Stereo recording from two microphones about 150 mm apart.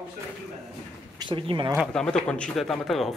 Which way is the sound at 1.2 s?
35° right (ahead or behind).